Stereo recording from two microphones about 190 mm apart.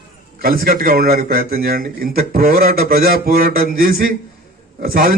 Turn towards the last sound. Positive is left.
turn(degrees=-50)  # may be behind; listen again after turning